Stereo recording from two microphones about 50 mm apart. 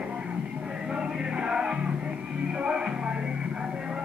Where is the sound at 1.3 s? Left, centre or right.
Centre.